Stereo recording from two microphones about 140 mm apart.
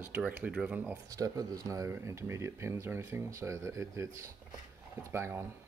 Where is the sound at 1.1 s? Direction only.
25° right (ahead or behind).